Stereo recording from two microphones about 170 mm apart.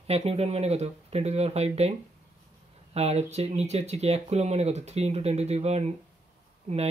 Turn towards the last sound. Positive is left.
turn(degrees=-40)  # may be behind; listen again after turning